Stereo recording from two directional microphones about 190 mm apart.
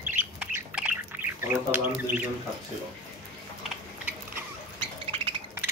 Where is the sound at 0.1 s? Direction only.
10° right (ahead or behind).